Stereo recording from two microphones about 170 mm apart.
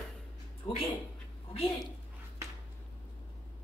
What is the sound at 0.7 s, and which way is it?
Speech, 20° left (ahead or behind).